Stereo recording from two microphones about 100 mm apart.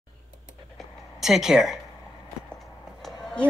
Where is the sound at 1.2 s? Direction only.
5° right (ahead or behind).